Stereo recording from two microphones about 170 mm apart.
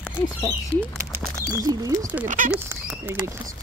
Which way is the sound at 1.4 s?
20° right (ahead or behind).